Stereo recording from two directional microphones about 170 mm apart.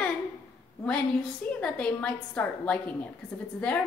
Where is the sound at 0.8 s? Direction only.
5° left (ahead or behind).